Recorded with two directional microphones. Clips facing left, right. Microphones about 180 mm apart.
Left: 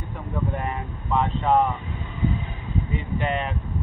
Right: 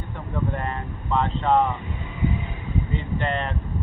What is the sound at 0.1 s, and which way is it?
Speech, 10° left (ahead or behind).